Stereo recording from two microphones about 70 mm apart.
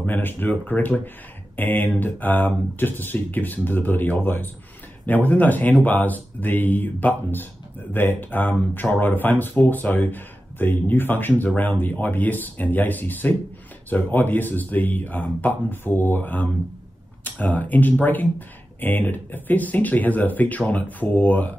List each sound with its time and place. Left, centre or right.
0.0 s speech: left